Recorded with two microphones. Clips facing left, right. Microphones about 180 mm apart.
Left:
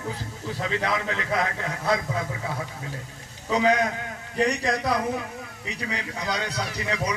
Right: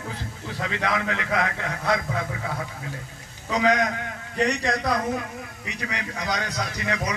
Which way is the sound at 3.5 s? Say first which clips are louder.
Even; 30° left (ahead or behind).